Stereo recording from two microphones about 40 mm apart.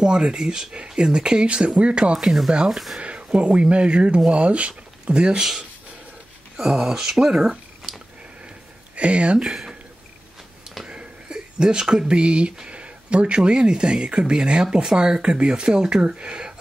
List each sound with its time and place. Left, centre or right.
0.0 s speech: right
2.1 s speech: centre
3.0 s a sound: right
3.3 s speech: right
6.5 s speech: centre
8.9 s speech: right
9.4 s speech: centre
10.9 s a sound: right
12.1 s speech: right